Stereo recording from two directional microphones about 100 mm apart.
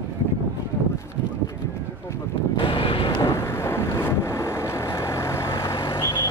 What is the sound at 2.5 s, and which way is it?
Vehicle, 65° left (ahead or behind).